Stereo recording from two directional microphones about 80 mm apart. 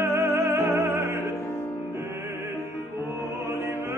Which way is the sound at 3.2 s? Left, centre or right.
Right.